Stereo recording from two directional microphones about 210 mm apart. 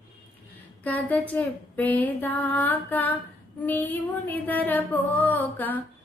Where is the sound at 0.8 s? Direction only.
5° left (ahead or behind).